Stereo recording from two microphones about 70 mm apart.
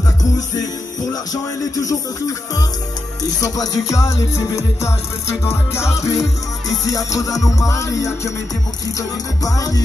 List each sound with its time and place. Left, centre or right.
1.3 s speech: left
3.3 s music: left
9.4 s speech: left